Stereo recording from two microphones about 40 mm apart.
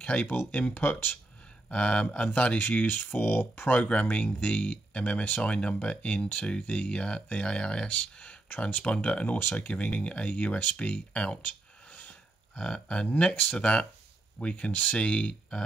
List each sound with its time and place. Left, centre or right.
0.0 s speech: left
1.7 s speech: left
3.1 s speech: left
3.7 s speech: left
8.5 s speech: left
11.4 s a sound: left
12.5 s speech: centre
13.3 s speech: left
13.6 s speech: left